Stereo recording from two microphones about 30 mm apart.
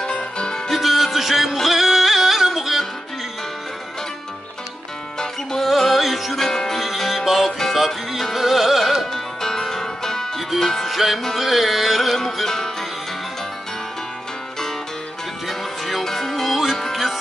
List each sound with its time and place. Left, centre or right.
0.0 s music: left
0.7 s music: centre
5.6 s music: centre
6.3 s music: centre
7.1 s music: centre
9.0 s music: centre
10.9 s music: centre
12.2 s music: centre
15.4 s music: centre
16.4 s music: centre